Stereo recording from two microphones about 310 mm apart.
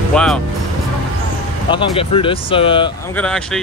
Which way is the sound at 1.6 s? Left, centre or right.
Centre.